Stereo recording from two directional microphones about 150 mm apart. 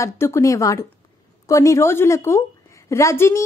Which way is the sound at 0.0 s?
20° left (ahead or behind).